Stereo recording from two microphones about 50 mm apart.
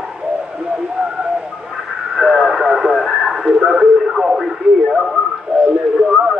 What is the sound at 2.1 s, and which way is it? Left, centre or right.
Radio, centre.